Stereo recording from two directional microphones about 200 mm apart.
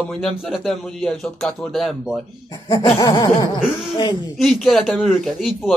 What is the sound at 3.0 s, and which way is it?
Chuckle, 20° left (ahead or behind).